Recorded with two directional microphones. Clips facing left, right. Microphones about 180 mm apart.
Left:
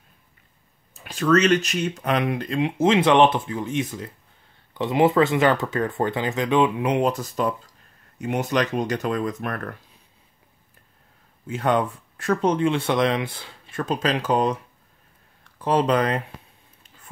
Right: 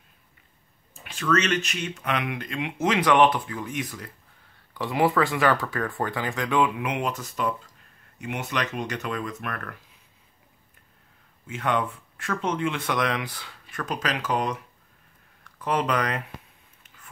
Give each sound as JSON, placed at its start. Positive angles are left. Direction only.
{"t": 0.9, "sound": "speech", "side_deg": 40}
{"t": 11.4, "sound": "speech", "side_deg": 35}
{"t": 16.8, "sound": "a sound", "side_deg": 30}